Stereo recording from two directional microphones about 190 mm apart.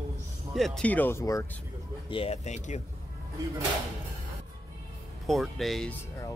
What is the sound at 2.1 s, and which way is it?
Speech, 30° left (ahead or behind).